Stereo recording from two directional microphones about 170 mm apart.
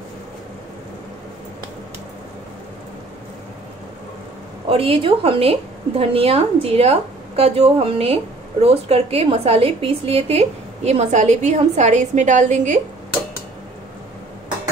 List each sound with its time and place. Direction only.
4.6 s a woman's voice: 35° right (ahead or behind)